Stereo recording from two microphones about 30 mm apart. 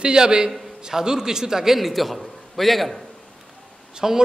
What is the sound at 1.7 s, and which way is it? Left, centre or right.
A man's voice, centre.